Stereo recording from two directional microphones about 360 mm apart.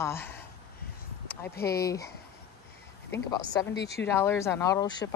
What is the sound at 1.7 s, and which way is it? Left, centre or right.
Speech, centre.